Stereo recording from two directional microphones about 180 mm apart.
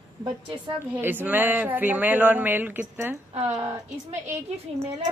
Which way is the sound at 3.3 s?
35° right (ahead or behind).